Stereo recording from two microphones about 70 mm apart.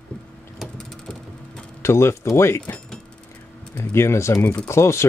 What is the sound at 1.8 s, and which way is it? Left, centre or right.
Speech, left.